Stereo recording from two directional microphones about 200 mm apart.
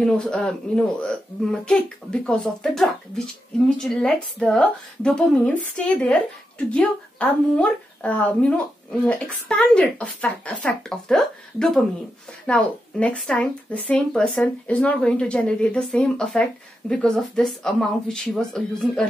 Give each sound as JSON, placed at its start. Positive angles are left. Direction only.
{"t": 0.0, "sound": "speech", "side_deg": 5}
{"t": 6.7, "sound": "speech", "side_deg": 5}